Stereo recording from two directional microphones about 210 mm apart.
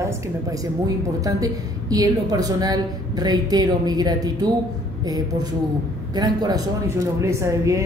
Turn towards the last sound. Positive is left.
turn(degrees=-15)  # may be behind; listen again after turning